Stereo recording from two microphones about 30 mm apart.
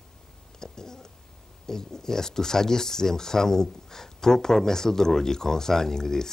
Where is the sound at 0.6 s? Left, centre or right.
Centre.